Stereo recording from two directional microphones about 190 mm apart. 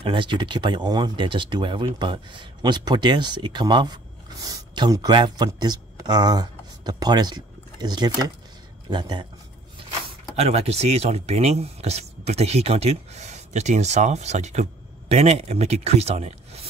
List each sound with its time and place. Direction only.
0.0 s speech: 25° right (ahead or behind)
10.3 s speech: 35° right (ahead or behind)